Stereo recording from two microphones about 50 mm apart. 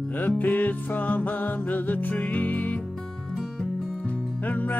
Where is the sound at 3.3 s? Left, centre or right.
Centre.